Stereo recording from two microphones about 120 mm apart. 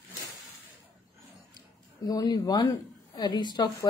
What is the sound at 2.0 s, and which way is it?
A woman's voice, 30° left (ahead or behind).